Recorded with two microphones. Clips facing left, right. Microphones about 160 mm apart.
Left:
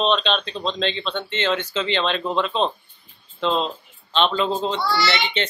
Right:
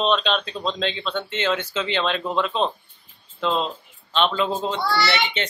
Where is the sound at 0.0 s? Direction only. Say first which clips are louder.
Left 1 dB; 5° right (ahead or behind).